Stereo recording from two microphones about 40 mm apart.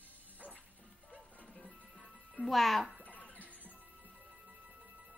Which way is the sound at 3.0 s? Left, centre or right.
Left.